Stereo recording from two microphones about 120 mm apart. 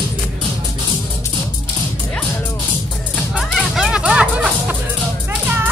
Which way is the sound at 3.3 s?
Centre (ahead or behind).